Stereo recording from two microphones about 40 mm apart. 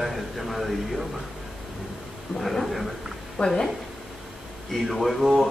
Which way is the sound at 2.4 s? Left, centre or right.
Centre.